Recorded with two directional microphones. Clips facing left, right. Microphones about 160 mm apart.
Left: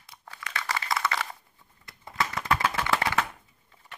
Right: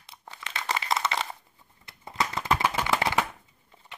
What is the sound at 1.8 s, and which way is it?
Shuffling cards, 20° right (ahead or behind).